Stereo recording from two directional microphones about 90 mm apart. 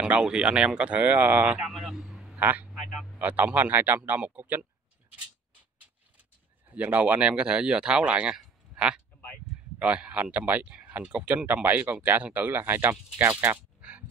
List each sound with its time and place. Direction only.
0.0 s speech: 10° right (ahead or behind)
1.7 s vehicle: centre (ahead or behind)
2.3 s a man's voice: 20° right (ahead or behind)
2.7 s a sound: centre (ahead or behind)
3.2 s speech: 15° right (ahead or behind)
6.7 s speech: 15° right (ahead or behind)
13.2 s a sound: 20° right (ahead or behind)